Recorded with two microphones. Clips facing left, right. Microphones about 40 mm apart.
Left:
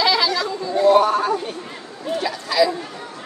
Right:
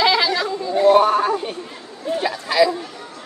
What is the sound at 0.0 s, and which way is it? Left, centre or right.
Chatter, right.